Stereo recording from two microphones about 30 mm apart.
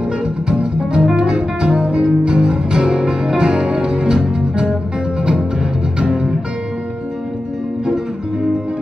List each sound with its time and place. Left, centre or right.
0.2 s music: right
5.9 s music: right